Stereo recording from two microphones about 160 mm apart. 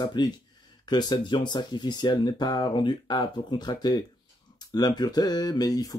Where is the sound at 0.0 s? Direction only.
25° left (ahead or behind).